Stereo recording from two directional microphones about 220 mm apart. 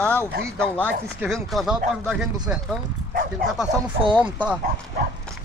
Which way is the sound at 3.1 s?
40° right (ahead or behind).